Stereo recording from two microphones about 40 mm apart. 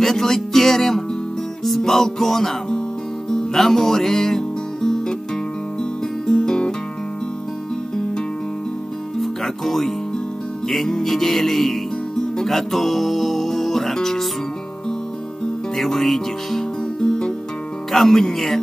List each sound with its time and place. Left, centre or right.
0.0 s music: centre
6.2 s music: centre
9.2 s music: centre
15.7 s music: centre